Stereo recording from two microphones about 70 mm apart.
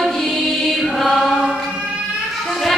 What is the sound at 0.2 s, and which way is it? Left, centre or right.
Music, centre.